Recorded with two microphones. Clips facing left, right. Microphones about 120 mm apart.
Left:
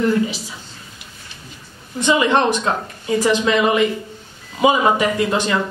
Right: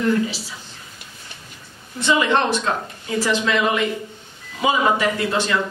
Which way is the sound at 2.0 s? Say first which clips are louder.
Left 3 dB; 15° left (ahead or behind).